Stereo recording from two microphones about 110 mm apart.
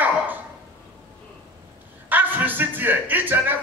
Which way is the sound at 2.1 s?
15° right (ahead or behind).